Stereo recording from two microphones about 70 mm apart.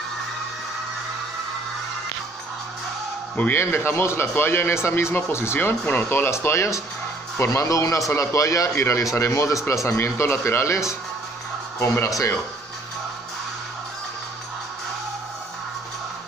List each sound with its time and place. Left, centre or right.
3.5 s a man's voice: left